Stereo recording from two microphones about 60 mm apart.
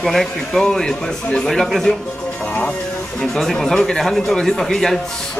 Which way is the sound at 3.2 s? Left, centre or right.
Centre.